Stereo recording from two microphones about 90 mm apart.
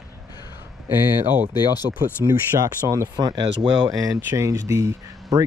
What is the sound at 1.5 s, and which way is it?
Speech, 50° left (ahead or behind).